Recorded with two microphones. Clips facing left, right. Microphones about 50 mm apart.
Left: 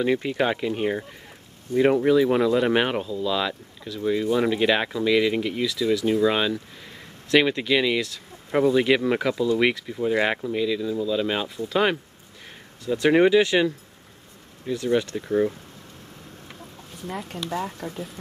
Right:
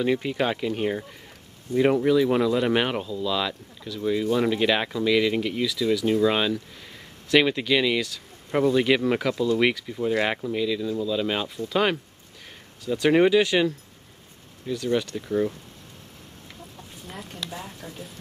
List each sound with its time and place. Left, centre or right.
0.0 s speech: centre
17.3 s speech: left